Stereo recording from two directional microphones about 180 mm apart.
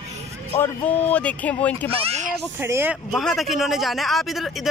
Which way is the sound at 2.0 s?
40° right (ahead or behind).